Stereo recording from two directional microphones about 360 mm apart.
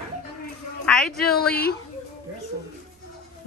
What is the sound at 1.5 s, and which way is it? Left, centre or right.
Speech, left.